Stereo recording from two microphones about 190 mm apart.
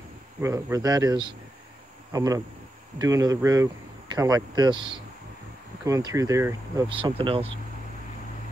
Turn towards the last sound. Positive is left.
turn(degrees=-30)  # may be behind; listen again after turning